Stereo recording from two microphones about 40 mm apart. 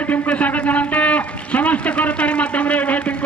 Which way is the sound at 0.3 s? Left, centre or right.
Left.